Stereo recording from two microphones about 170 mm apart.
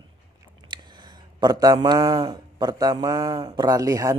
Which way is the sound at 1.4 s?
25° right (ahead or behind).